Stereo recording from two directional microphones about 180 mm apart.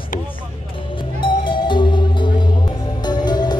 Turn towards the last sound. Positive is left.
turn(degrees=25)  # may be behind; listen again after turning